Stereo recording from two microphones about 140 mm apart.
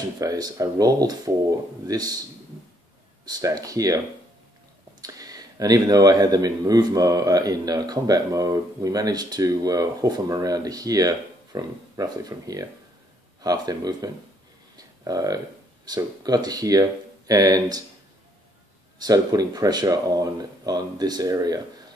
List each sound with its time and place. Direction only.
0.2 s speech: 25° right (ahead or behind)
3.3 s speech: 25° right (ahead or behind)
5.0 s speech: 25° right (ahead or behind)
18.9 s speech: 25° right (ahead or behind)